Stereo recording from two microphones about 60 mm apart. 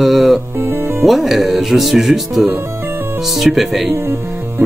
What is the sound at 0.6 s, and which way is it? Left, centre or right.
Speech, right.